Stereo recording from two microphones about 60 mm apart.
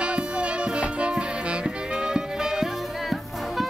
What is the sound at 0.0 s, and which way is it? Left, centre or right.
Music, centre.